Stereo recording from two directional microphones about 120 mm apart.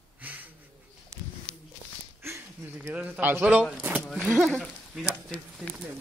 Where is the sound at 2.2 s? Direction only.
25° right (ahead or behind).